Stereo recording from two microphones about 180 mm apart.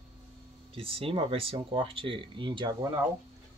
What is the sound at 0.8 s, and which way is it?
Speech, 30° right (ahead or behind).